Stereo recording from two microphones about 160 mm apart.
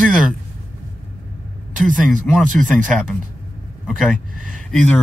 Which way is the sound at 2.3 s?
Centre (ahead or behind).